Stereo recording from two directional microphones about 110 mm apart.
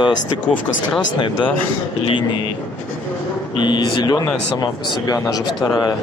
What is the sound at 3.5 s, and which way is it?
Speech, 45° left (ahead or behind).